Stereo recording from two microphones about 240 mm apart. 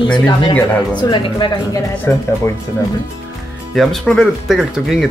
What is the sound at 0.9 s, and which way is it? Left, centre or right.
Speech, centre.